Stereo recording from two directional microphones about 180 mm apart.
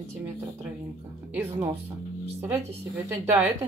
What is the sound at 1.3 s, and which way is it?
Speech, 10° right (ahead or behind).